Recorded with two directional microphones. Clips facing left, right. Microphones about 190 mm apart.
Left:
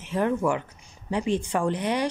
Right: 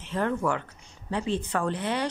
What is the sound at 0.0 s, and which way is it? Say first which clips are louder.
Speech: left 3 dB; 10° left (ahead or behind).